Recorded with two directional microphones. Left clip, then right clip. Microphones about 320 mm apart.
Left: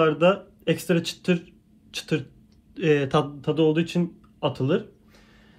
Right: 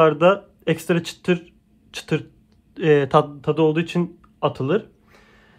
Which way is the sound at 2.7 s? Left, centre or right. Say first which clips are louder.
Right 5 dB; centre.